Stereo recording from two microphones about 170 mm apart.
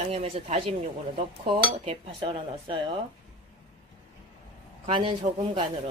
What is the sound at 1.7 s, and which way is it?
Speech, 30° right (ahead or behind).